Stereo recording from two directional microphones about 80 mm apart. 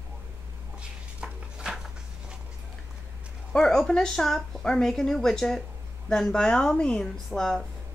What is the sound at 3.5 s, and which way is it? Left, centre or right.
A woman's voice, centre.